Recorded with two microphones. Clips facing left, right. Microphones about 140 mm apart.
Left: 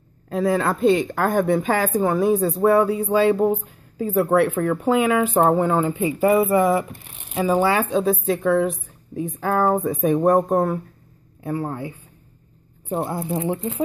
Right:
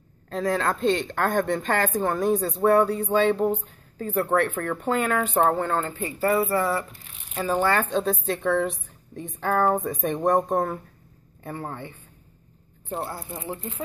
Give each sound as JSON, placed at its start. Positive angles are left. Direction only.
{"t": 0.3, "sound": "speech", "side_deg": 5}